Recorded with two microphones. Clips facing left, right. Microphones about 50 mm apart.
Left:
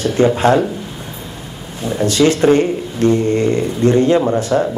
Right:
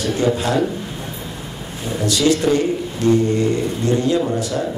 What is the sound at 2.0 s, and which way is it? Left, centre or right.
Speech, left.